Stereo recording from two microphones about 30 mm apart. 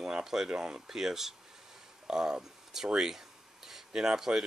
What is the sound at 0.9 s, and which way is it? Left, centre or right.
Speech, centre.